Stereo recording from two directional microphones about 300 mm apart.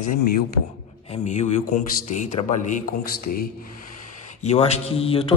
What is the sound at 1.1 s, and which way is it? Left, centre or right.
Speech, left.